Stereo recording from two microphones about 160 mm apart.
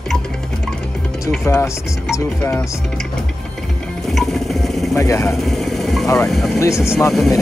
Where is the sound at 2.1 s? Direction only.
20° left (ahead or behind).